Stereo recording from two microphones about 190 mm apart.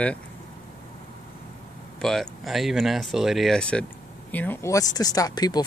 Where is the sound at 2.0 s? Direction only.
Centre (ahead or behind); by 5.6 s 20° left (ahead or behind).